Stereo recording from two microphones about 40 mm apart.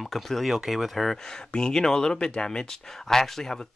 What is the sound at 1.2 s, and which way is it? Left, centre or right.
Speech, centre.